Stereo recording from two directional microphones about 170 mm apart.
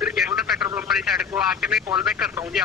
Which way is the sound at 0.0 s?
5° right (ahead or behind).